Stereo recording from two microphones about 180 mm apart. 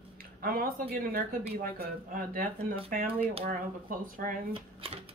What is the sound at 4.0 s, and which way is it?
Speech, 50° right (ahead or behind).